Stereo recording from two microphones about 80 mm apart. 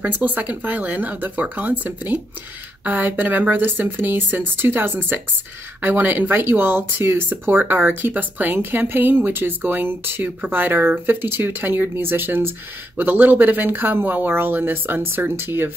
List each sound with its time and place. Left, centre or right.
0.0 s speech: right